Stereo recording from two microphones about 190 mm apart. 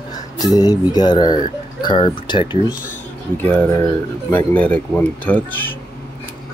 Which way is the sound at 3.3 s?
10° left (ahead or behind).